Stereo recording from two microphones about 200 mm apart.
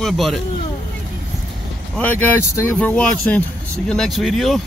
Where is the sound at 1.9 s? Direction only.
5° left (ahead or behind).